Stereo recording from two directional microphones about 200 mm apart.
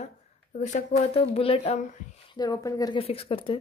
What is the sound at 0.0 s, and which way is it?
Speech, 35° left (ahead or behind).